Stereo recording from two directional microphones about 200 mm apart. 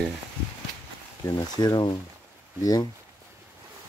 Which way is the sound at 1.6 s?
20° left (ahead or behind).